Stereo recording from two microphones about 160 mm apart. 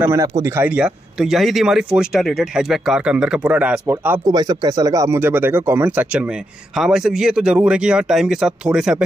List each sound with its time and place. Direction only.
0.0 s speech: 20° right (ahead or behind)
0.7 s speech: 5° right (ahead or behind)
4.3 s speech: 25° right (ahead or behind); by 8.9 s 5° right (ahead or behind)